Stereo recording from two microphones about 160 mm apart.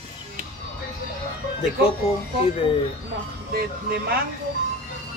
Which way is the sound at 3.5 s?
75° right (ahead or behind).